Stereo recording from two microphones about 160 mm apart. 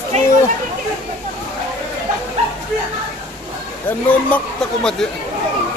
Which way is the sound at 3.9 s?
5° left (ahead or behind).